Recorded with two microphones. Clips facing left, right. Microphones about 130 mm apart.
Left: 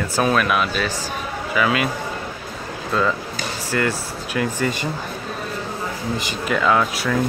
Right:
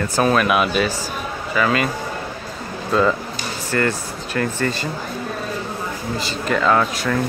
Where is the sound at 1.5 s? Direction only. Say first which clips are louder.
Right 1 dB; 5° left (ahead or behind).